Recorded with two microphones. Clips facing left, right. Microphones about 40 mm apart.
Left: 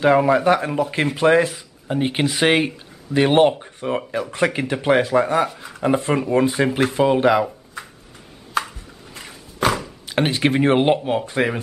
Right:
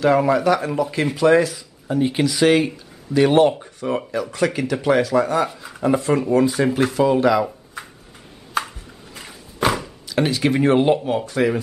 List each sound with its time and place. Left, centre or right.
0.3 s speech: left
7.4 s a sound: centre
10.0 s speech: left